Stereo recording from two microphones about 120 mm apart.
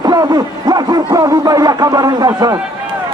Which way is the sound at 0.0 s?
35° right (ahead or behind).